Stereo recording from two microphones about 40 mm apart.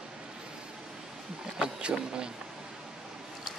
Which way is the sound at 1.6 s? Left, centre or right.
Right.